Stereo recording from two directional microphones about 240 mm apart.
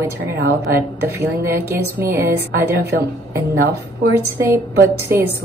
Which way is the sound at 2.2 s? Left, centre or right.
Right.